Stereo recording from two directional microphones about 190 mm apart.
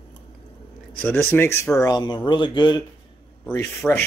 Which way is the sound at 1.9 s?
20° left (ahead or behind).